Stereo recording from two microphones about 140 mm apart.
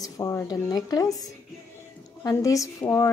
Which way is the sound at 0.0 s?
20° left (ahead or behind).